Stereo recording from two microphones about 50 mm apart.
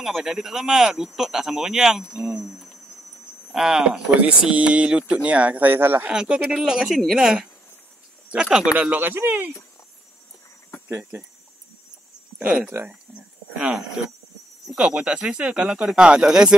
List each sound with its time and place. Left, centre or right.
0.0 s speech: centre
2.0 s speech: right
2.4 s a sound: centre
3.5 s speech: centre
3.8 s speech: right
5.8 s speech: right
6.1 s speech: right
8.7 s speech: right
11.1 s speech: right
12.4 s speech: right
14.8 s speech: right